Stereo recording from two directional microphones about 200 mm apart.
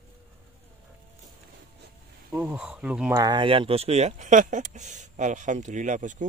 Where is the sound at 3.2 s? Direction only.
25° right (ahead or behind).